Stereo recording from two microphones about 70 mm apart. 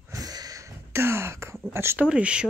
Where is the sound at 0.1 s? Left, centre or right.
Right.